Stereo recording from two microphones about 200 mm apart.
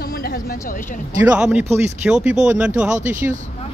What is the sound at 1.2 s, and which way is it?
Speech, 5° right (ahead or behind).